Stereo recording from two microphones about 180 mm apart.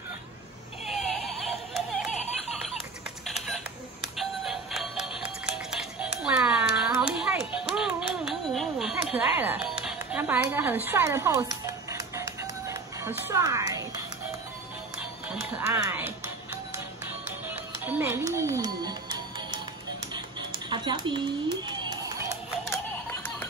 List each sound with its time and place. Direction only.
0.8 s a sound: centre (ahead or behind)
3.3 s camera: centre (ahead or behind)
4.2 s music: centre (ahead or behind); by 13.8 s 20° right (ahead or behind)
15.5 s speech: 10° right (ahead or behind)
17.8 s music: 10° right (ahead or behind)
20.7 s speech: 25° right (ahead or behind)
21.6 s a sound: 25° right (ahead or behind)